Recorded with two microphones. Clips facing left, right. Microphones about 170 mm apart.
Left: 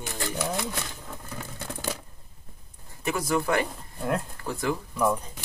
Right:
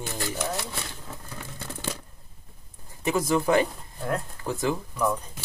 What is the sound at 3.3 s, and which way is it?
Speech, 20° right (ahead or behind).